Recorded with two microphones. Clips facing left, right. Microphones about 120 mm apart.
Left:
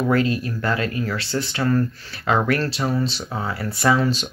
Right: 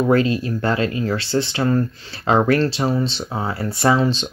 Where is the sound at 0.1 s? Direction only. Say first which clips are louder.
Right 3 dB; 25° right (ahead or behind).